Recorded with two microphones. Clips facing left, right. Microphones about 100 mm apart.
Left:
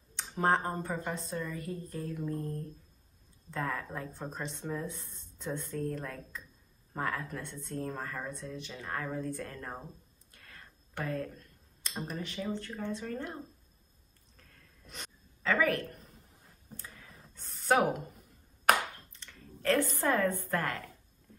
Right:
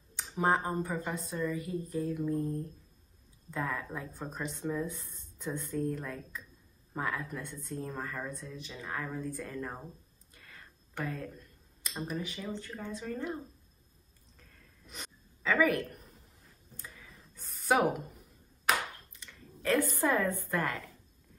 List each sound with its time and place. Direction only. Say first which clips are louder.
0.1 s speech: even; 5° right (ahead or behind)
14.5 s a sound: left 1 dB; 5° right (ahead or behind)
18.7 s clapping: left 4 dB; 55° left (ahead or behind)
19.2 s speech: left 2 dB; 5° right (ahead or behind)